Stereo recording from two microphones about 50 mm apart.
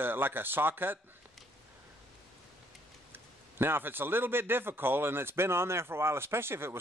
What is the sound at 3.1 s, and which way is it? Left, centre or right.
A man's voice, right.